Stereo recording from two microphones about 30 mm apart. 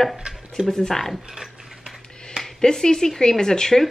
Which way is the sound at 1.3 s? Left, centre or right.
Centre.